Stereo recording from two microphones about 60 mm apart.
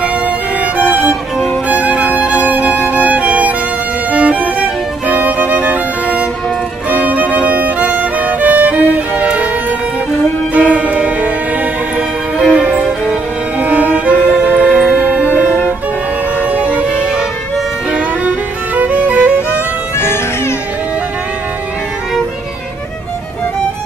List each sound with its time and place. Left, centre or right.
0.6 s violin: right
1.7 s music: right
10.5 s music: right
12.5 s music: right
18.8 s music: right
20.0 s music: left